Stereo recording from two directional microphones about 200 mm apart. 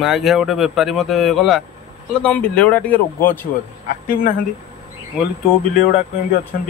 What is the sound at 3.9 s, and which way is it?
Speech, 40° left (ahead or behind).